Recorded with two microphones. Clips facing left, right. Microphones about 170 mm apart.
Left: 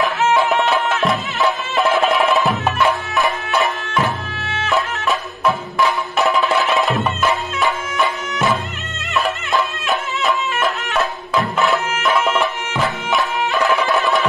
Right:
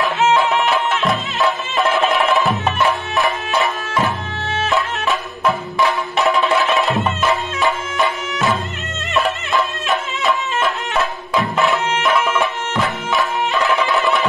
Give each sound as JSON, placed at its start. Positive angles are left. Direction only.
{"t": 1.0, "sound": "music", "side_deg": 0}
{"t": 5.0, "sound": "music", "side_deg": 0}
{"t": 7.6, "sound": "music", "side_deg": 0}
{"t": 11.5, "sound": "music", "side_deg": 0}
{"t": 13.5, "sound": "music", "side_deg": -20}